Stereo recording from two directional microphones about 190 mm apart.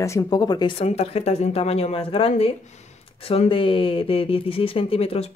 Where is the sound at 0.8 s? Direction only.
30° left (ahead or behind).